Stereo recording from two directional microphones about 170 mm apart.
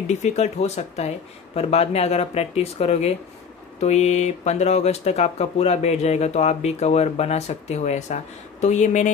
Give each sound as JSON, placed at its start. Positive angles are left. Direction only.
{"t": 0.1, "sound": "speech", "side_deg": 40}